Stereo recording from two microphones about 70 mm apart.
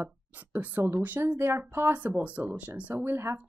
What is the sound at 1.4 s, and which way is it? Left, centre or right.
Speech, right.